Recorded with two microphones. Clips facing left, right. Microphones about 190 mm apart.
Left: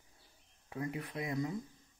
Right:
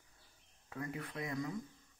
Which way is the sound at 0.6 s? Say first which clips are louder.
Left 3 dB; 20° left (ahead or behind).